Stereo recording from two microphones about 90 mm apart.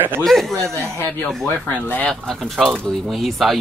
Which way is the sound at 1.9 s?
20° left (ahead or behind).